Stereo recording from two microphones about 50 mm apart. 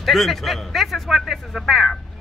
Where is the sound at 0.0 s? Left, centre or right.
Centre.